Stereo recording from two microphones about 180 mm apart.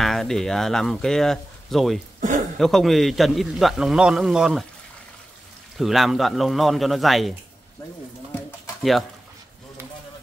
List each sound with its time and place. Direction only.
0.0 s speech: centre (ahead or behind)
2.1 s a sound: 45° right (ahead or behind)
2.6 s a man's voice: centre (ahead or behind)
5.8 s a man's voice: centre (ahead or behind)
8.4 s bird: centre (ahead or behind)